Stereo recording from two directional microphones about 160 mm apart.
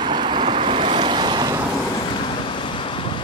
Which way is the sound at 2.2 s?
30° left (ahead or behind).